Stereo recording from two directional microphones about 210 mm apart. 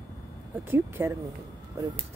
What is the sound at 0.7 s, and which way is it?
Speech, 10° right (ahead or behind).